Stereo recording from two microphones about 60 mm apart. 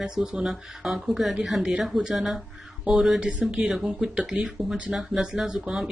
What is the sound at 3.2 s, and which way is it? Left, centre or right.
Speech, centre.